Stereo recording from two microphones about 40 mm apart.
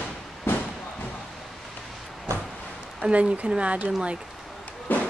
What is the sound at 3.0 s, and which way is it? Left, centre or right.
Speech, right.